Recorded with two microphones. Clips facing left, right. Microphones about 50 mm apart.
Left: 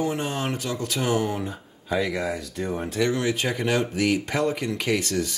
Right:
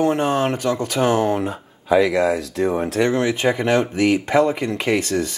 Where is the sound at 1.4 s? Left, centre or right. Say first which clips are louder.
Right 7 dB; right.